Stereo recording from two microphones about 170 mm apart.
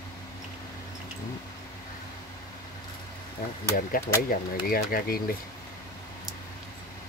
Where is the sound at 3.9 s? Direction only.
55° left (ahead or behind).